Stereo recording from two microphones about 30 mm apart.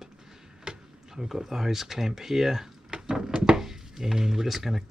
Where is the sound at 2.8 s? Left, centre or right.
Right.